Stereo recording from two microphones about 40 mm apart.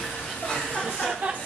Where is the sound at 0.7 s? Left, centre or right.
Centre.